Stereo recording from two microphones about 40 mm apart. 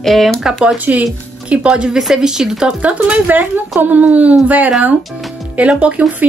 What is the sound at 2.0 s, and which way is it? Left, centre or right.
Speech, centre.